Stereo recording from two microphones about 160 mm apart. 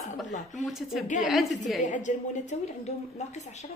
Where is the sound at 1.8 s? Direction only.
50° left (ahead or behind).